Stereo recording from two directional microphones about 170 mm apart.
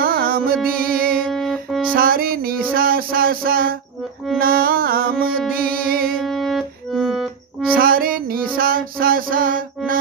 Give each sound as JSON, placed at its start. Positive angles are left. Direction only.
{"t": 0.0, "sound": "music", "side_deg": -60}
{"t": 1.2, "sound": "music", "side_deg": 0}
{"t": 2.0, "sound": "music", "side_deg": -60}
{"t": 6.2, "sound": "music", "side_deg": 0}
{"t": 7.7, "sound": "music", "side_deg": -60}